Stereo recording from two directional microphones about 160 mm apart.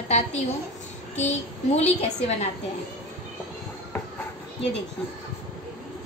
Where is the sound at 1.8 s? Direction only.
45° left (ahead or behind).